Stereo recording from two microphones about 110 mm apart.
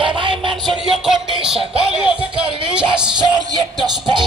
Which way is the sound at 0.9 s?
Centre (ahead or behind).